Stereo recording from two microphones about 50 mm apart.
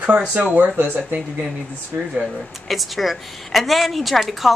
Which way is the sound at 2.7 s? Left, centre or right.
Centre.